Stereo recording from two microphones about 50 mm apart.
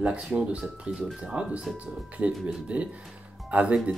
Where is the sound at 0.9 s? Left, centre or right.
Centre.